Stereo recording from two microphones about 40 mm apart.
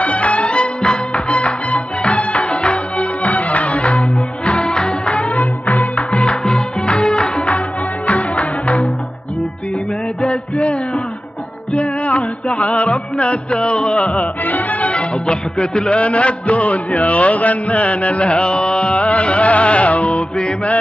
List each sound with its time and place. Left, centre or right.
0.0 s music: left
6.4 s music: centre; by 8.8 s left
10.2 s music: left
14.4 s music: left